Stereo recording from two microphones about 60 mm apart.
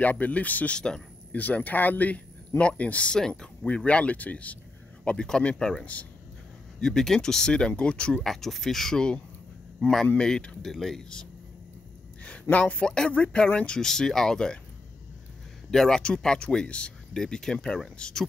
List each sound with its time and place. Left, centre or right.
0.0 s speech: left
0.7 s speech: centre
1.3 s speech: left
3.2 s speech: centre; by 4.6 s left
5.0 s speech: centre
6.8 s speech: centre
8.2 s speech: centre
12.2 s speech: left
15.7 s speech: centre